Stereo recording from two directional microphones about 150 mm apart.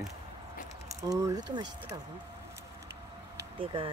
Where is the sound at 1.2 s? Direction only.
25° right (ahead or behind).